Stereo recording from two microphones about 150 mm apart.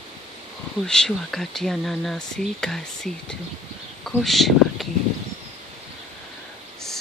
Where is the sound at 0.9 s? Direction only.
5° left (ahead or behind).